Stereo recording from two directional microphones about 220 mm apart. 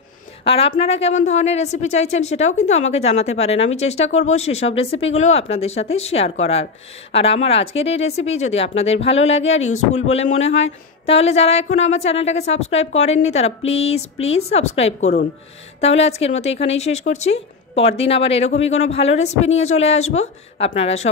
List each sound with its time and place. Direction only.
0.4 s a woman's voice: 25° left (ahead or behind)
15.0 s a woman's voice: 30° left (ahead or behind)